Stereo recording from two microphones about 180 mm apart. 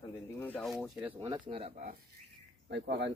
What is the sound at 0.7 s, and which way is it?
Speech, centre (ahead or behind).